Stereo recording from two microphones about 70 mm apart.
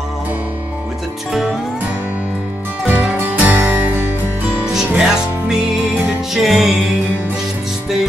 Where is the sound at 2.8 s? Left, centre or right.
Right.